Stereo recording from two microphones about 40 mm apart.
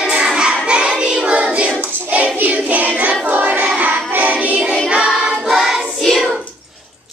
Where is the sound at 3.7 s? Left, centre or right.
Right.